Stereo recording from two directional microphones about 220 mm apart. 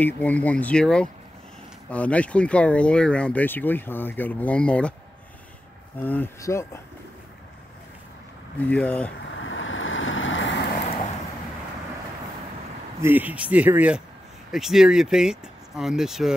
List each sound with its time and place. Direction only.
0.0 s speech: 5° left (ahead or behind)
5.9 s speech: 10° left (ahead or behind)
8.6 s speech: 5° left (ahead or behind)
9.4 s vehicle: 60° left (ahead or behind)
13.0 s speech: 10° right (ahead or behind)